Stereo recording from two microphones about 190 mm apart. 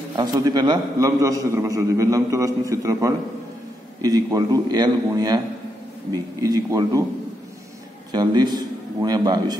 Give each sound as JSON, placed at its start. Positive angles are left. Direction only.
{"t": 0.1, "sound": "a man's voice", "side_deg": -20}
{"t": 8.1, "sound": "a man's voice", "side_deg": -20}